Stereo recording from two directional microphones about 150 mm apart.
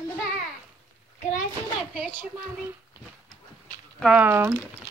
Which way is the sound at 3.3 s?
Centre (ahead or behind).